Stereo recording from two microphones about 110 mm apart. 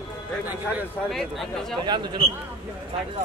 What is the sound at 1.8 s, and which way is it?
Speech, 45° right (ahead or behind).